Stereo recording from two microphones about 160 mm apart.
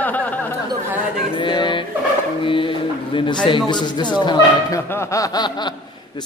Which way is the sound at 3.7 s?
30° left (ahead or behind).